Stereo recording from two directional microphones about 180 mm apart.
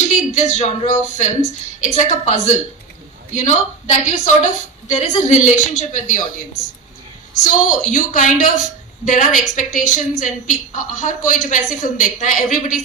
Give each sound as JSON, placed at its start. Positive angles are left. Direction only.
{"t": 0.1, "sound": "a woman's voice", "side_deg": 45}
{"t": 7.8, "sound": "a woman's voice", "side_deg": 45}